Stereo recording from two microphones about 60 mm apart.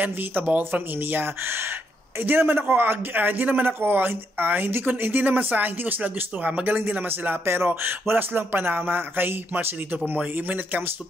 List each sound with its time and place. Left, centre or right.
0.0 s speech: right